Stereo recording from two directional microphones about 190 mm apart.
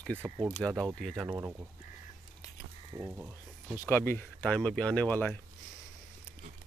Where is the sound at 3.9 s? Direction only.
10° left (ahead or behind).